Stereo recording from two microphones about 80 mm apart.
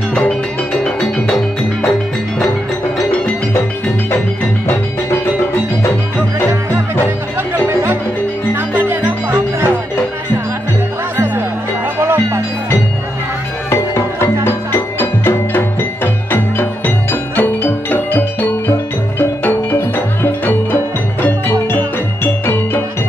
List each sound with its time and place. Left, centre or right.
1.9 s music: centre
7.6 s music: right
12.0 s music: right
13.7 s music: left